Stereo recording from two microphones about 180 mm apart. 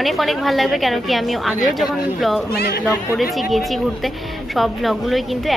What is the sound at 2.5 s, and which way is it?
Speech, 60° left (ahead or behind).